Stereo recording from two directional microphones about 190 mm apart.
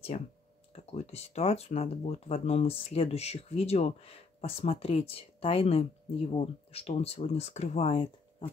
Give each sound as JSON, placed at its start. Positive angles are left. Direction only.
{"t": 0.1, "sound": "speech", "side_deg": 35}